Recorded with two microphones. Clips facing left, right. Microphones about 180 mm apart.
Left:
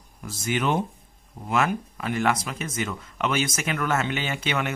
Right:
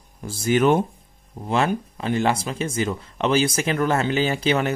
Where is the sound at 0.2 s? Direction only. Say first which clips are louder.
Right 8 dB; 30° right (ahead or behind).